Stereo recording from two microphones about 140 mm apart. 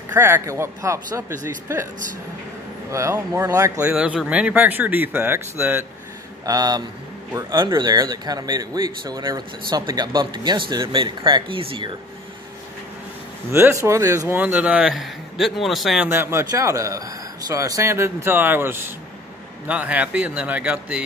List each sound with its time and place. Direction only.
0.1 s speech: 20° right (ahead or behind)
2.9 s speech: 20° right (ahead or behind)
3.8 s speech: 10° right (ahead or behind)
6.4 s speech: 25° right (ahead or behind)
13.5 s speech: 15° right (ahead or behind)
14.3 s a man's voice: 10° right (ahead or behind)
16.1 s speech: 15° right (ahead or behind)